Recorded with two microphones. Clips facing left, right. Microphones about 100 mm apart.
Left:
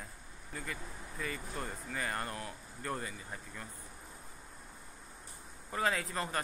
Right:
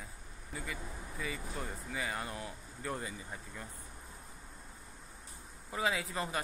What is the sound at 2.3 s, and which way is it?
Speech, 20° right (ahead or behind).